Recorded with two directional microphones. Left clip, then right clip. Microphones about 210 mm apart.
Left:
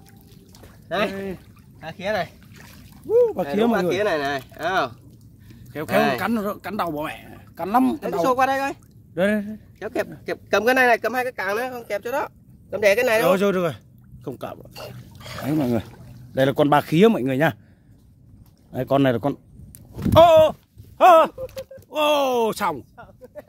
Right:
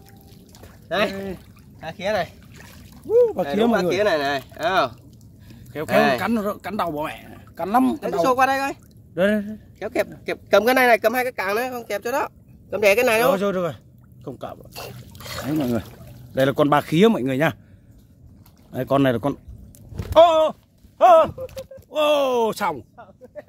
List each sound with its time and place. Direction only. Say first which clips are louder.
0.6 s a sound: right 2 dB; 10° right (ahead or behind)
1.2 s speech: even; 5° right (ahead or behind)
2.5 s a sound: right 1 dB; 5° left (ahead or behind)
3.9 s speech: right 2 dB; 10° right (ahead or behind)
5.7 s speech: right 2 dB; 5° left (ahead or behind); by 8.7 s 15° right (ahead or behind)
9.1 s speech: right 1 dB; 5° left (ahead or behind)
9.8 s speech: right 3 dB; 10° right (ahead or behind)
13.3 s speech: left 1 dB; 30° left (ahead or behind)
14.7 s speech: right 1 dB; 40° right (ahead or behind)
15.4 s speech: left 1 dB; 20° left (ahead or behind)
16.3 s speech: even; 5° left (ahead or behind)
18.7 s speech: even; centre (ahead or behind)
20.1 s speech: left 2 dB; 30° left (ahead or behind)
21.9 s speech: right 1 dB; 20° left (ahead or behind)